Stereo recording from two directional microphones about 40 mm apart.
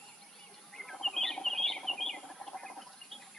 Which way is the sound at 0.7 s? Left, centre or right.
Centre.